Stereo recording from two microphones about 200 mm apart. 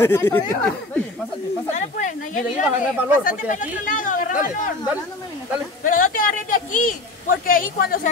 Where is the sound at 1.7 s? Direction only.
40° left (ahead or behind).